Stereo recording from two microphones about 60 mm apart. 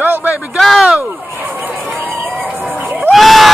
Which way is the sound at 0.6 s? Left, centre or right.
Centre.